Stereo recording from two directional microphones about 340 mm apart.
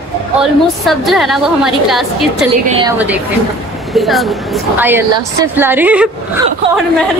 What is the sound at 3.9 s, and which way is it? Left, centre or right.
A woman's voice, centre.